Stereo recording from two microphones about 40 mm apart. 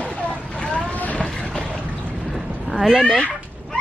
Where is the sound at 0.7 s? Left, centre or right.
Left.